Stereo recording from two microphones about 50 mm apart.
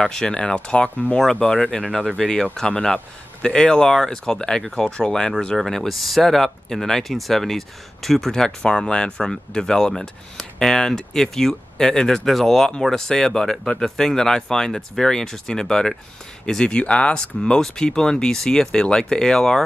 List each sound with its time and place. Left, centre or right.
0.0 s speech: centre
5.6 s speech: centre